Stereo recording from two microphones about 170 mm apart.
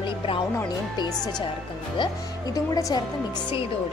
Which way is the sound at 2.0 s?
20° left (ahead or behind).